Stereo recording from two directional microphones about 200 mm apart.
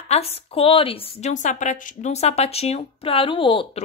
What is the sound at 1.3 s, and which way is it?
A woman's voice, 40° left (ahead or behind).